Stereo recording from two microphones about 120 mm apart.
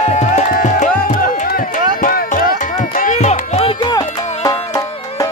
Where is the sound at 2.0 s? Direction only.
90° left; by 3.7 s 70° left (ahead or behind).